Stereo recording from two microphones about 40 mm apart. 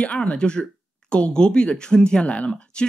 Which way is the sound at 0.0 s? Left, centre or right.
Left.